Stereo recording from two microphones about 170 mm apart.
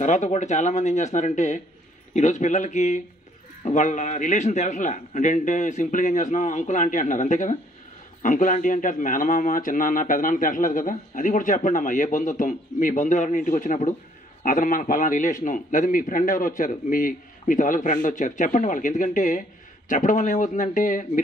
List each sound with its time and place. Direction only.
0.0 s a man's voice: 45° left (ahead or behind)